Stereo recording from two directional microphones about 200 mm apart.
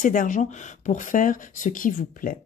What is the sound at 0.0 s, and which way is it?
Speech, 40° left (ahead or behind).